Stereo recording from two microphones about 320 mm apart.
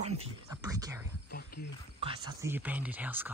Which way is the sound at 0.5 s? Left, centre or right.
Centre.